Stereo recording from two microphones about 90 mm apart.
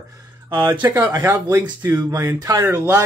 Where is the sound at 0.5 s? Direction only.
30° right (ahead or behind).